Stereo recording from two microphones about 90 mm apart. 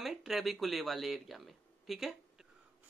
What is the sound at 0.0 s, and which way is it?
Speech, 5° right (ahead or behind).